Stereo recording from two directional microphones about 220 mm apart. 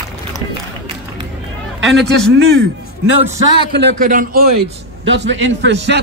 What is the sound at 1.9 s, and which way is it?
Speech, centre (ahead or behind).